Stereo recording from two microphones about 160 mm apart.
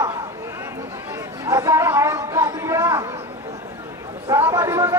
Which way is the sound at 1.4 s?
15° right (ahead or behind).